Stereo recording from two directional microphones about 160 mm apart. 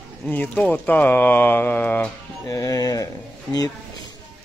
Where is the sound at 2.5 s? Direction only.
20° left (ahead or behind).